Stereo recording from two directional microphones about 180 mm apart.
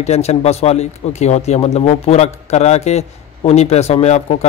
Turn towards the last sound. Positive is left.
turn(degrees=40)  # may be behind; listen again after turning